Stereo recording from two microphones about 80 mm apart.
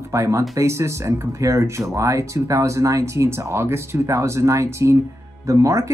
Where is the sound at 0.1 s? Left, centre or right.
Right.